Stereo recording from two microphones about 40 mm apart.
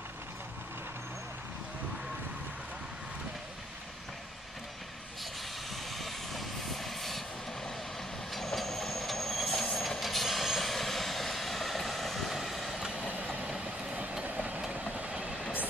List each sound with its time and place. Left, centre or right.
5.9 s vehicle: centre
8.3 s train: centre
9.8 s vehicle: centre
13.1 s train: right
14.3 s vehicle: right
14.6 s vehicle: right